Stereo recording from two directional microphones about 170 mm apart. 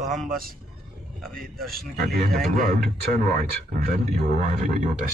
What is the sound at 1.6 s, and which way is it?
Speech, 60° right (ahead or behind).